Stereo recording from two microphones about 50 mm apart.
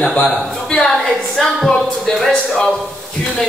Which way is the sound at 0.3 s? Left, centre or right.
Centre.